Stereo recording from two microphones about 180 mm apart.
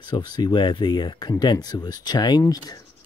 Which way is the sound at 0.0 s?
25° left (ahead or behind).